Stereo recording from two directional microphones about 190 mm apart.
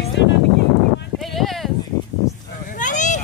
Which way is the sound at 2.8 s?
40° left (ahead or behind).